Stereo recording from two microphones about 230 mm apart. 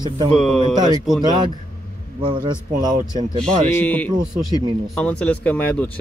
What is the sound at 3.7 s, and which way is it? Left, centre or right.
Speech, centre.